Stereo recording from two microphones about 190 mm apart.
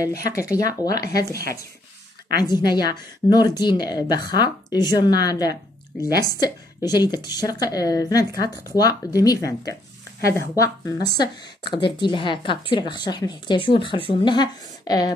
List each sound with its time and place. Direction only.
0.3 s speech: 15° left (ahead or behind)
2.3 s a woman's voice: 20° left (ahead or behind)